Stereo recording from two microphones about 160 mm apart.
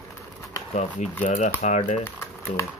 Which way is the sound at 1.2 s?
45° left (ahead or behind).